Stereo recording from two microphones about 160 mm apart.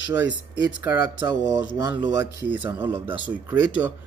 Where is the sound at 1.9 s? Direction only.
25° right (ahead or behind).